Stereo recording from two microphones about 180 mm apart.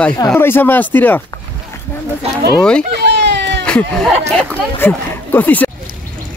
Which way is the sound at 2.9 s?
75° right (ahead or behind).